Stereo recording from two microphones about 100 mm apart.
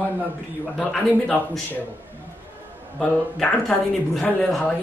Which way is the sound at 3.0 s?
5° left (ahead or behind).